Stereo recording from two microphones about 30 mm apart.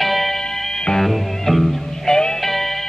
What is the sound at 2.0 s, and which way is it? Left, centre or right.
Music, left.